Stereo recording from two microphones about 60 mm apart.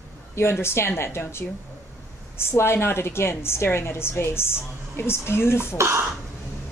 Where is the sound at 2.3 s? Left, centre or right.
Left.